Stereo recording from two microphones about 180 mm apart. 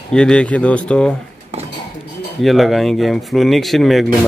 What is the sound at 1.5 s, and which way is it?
Dishes, 35° right (ahead or behind).